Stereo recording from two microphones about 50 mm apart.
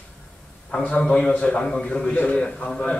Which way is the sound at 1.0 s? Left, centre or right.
Left.